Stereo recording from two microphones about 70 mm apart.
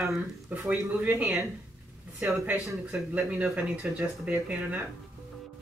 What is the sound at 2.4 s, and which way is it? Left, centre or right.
Speech, right.